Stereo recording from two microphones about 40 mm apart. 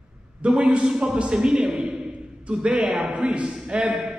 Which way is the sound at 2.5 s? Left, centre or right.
Right.